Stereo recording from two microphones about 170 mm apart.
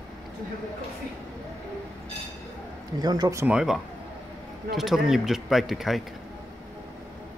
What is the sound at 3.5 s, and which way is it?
Speech, 5° right (ahead or behind).